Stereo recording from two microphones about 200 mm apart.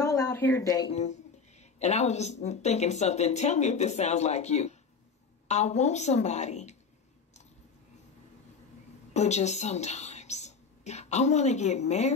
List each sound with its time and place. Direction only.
0.0 s a sound: 15° left (ahead or behind)
0.9 s a woman's voice: 35° left (ahead or behind)
9.1 s a woman's voice: 35° left (ahead or behind)